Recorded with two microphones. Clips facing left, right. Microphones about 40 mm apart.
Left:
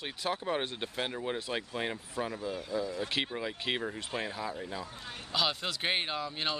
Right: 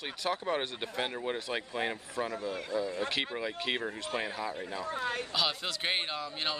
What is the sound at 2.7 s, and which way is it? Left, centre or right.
Speech, right.